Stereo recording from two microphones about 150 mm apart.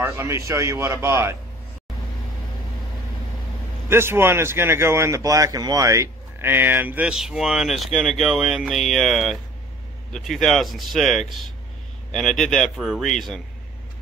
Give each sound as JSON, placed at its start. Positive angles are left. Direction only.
{"t": 0.0, "sound": "speech", "side_deg": -15}
{"t": 3.9, "sound": "a man's voice", "side_deg": -15}